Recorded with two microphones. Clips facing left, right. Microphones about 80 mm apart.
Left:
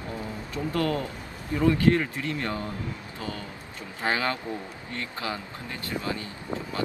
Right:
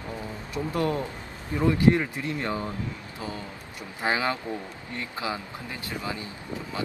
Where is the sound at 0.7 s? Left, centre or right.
Right.